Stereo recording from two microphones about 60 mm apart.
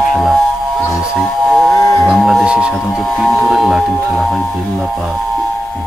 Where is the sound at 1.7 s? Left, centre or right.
Left.